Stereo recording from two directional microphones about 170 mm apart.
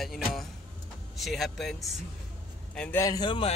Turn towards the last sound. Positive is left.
turn(degrees=25)  # may be behind; listen again after turning